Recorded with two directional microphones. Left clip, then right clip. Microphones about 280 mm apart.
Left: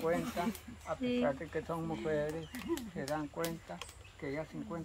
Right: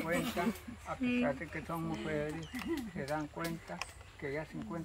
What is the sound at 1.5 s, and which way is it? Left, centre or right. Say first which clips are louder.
Speech: left 2 dB; centre.